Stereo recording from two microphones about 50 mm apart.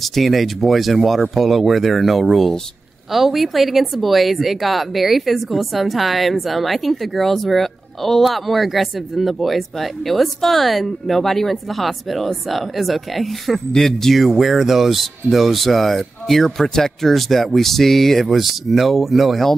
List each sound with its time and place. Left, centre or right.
0.0 s speech: centre
14.2 s speech: centre